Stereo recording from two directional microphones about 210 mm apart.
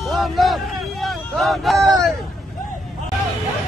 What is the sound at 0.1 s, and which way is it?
A man's voice, centre (ahead or behind).